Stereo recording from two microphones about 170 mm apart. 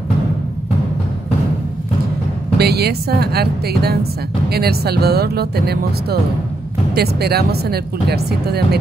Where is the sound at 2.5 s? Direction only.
70° right (ahead or behind).